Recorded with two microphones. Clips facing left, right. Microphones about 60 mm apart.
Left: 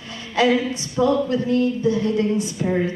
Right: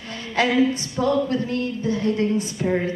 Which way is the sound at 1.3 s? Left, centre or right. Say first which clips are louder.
Left 4 dB; right.